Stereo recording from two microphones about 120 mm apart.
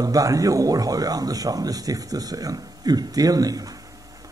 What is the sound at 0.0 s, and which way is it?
Speech, 30° right (ahead or behind).